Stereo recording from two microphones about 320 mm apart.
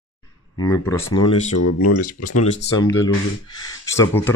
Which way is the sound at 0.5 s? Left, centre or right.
Centre.